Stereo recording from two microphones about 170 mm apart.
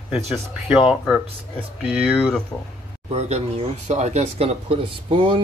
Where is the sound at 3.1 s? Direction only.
40° right (ahead or behind).